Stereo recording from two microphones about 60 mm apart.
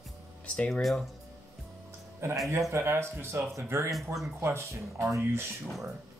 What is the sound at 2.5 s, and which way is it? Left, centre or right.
Speech, right.